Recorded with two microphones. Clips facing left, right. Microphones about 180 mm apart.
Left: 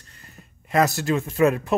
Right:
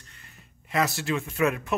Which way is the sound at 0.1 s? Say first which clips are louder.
Left 5 dB; 40° left (ahead or behind).